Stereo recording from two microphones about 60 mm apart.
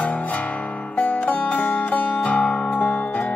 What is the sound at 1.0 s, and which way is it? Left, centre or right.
Music, left.